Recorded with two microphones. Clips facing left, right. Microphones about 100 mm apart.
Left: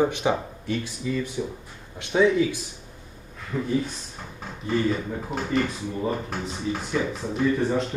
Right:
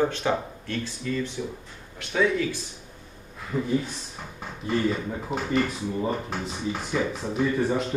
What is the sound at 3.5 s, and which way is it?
Speech, 10° right (ahead or behind).